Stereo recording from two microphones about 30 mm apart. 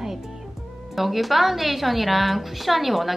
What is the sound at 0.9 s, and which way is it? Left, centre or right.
A woman's voice, centre.